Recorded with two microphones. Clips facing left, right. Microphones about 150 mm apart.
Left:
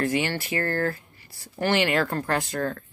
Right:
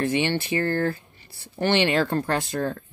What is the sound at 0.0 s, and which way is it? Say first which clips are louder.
Speech: right 2 dB; 25° right (ahead or behind).